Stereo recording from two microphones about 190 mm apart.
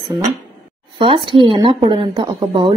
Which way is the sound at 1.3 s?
25° right (ahead or behind).